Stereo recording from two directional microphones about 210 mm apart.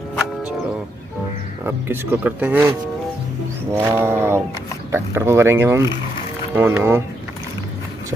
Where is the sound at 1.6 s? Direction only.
10° right (ahead or behind).